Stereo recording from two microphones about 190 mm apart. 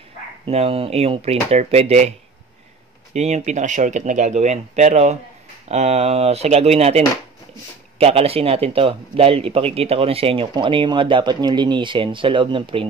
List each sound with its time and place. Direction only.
0.5 s speech: 30° right (ahead or behind)
8.0 s speech: 30° right (ahead or behind)